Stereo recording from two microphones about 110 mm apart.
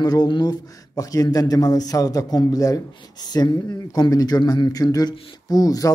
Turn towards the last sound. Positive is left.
turn(degrees=35)  # may be behind; listen again after turning